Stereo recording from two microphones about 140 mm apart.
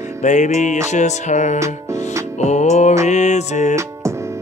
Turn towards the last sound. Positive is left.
turn(degrees=55)  # may be behind; listen again after turning